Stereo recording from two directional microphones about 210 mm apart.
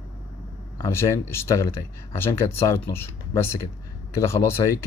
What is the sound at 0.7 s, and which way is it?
Speech, 15° left (ahead or behind).